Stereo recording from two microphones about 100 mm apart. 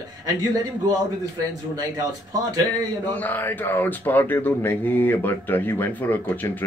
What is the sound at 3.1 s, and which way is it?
Speech, 20° left (ahead or behind).